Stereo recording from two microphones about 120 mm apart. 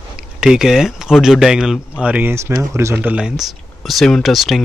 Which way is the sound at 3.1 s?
5° right (ahead or behind).